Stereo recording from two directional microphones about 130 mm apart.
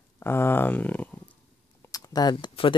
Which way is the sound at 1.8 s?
30° left (ahead or behind).